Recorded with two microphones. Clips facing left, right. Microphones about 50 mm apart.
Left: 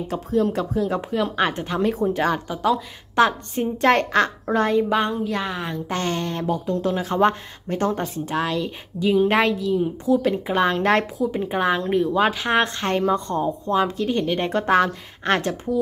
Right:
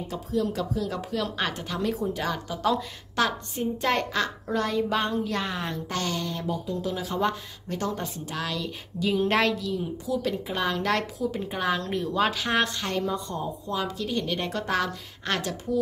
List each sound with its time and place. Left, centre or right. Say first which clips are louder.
0.1 s a woman's voice: left 6 dB; left
3.2 s a woman's voice: left 8 dB; left
3.7 s a child's voice: left 9 dB; left
4.6 s a woman's voice: left 6 dB; left; by 5.8 s centre
5.9 s a woman's voice: left 7 dB; left
6.4 s a woman's voice: left 7 dB; left
9.0 s a woman's voice: left 5 dB; centre
10.1 s a woman's voice: left 8 dB; left